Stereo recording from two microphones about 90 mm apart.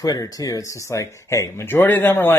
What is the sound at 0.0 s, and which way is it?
Speech, 45° left (ahead or behind).